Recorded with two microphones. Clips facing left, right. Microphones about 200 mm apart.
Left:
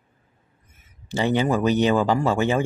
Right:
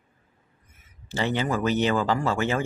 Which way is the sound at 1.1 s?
15° left (ahead or behind).